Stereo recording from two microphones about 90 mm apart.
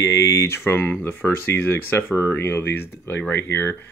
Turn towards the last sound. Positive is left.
turn(degrees=25)  # may be behind; listen again after turning